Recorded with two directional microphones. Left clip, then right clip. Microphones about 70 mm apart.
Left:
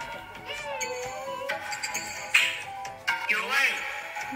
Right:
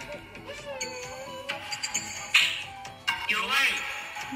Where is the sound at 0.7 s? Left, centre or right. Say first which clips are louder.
Left 3 dB; centre.